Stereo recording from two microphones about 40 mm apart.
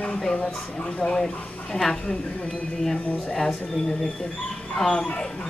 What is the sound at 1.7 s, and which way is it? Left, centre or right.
Speech, centre.